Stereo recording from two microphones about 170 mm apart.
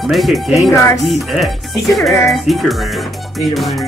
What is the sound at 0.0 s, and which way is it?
Speech, centre (ahead or behind).